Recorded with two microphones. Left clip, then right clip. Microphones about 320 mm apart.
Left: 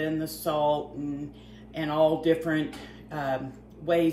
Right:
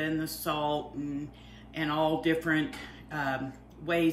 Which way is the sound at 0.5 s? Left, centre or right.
Centre.